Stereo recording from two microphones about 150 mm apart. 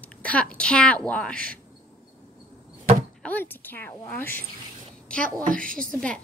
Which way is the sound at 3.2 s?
10° left (ahead or behind).